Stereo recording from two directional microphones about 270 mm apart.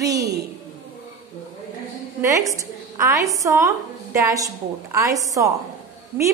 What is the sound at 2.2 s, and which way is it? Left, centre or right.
A woman's voice, centre.